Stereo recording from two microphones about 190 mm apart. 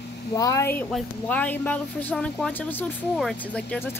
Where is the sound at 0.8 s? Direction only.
5° left (ahead or behind).